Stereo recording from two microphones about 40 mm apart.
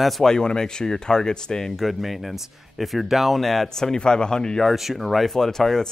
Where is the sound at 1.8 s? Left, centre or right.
Centre.